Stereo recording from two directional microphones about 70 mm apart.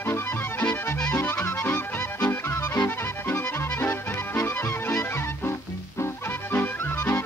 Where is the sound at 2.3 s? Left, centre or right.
Left.